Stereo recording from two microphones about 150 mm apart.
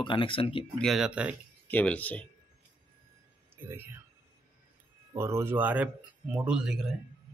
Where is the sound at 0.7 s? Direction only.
Centre (ahead or behind).